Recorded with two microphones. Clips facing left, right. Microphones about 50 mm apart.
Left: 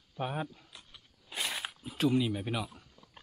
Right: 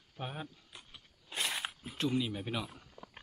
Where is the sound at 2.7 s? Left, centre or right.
Centre.